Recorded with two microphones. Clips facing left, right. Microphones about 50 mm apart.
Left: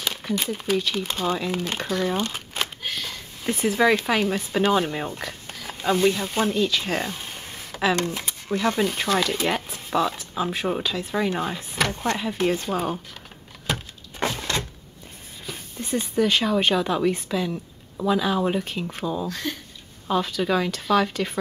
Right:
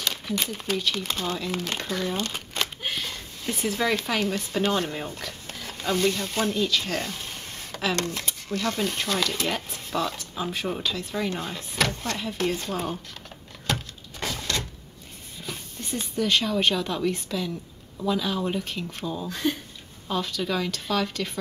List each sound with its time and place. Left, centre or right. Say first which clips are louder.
0.0 s speech: left 2 dB; centre
8.8 s speech: left 4 dB; centre
13.7 s a sound: even; centre
14.2 s cupboard open or close: left 4 dB; left
15.9 s a woman's voice: left 3 dB; centre
19.2 s speech: right 2 dB; centre
20.1 s speech: left 5 dB; centre